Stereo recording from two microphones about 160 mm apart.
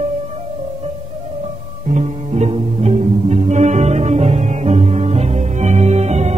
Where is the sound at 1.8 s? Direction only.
45° right (ahead or behind).